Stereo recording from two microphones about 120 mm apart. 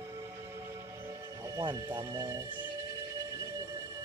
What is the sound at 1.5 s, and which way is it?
Speech, 35° right (ahead or behind).